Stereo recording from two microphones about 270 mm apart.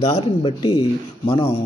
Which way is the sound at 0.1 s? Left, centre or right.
Centre.